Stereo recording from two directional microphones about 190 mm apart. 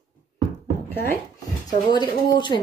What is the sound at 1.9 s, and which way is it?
Speech, 20° left (ahead or behind).